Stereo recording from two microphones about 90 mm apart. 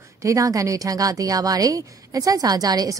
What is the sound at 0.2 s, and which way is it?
A woman's voice, 40° right (ahead or behind).